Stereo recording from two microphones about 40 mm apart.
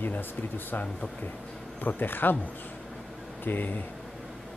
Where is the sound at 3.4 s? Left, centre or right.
Left.